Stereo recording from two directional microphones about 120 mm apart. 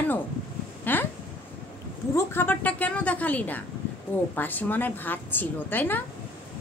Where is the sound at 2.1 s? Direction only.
20° left (ahead or behind).